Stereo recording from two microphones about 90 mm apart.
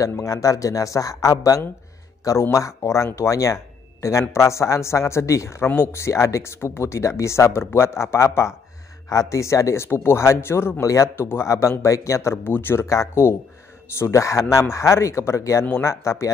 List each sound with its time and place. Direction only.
0.0 s speech: 35° left (ahead or behind)
12.8 s speech: 35° left (ahead or behind)